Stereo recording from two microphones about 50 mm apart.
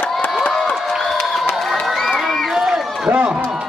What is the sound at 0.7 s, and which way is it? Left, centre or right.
Crowd, centre.